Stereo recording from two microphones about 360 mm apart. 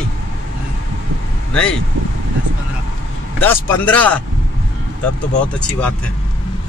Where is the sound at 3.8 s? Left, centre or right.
Centre.